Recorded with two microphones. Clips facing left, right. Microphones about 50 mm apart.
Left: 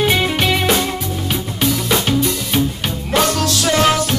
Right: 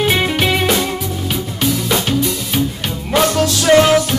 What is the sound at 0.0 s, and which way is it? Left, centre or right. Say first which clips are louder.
Music: right 1 dB; centre.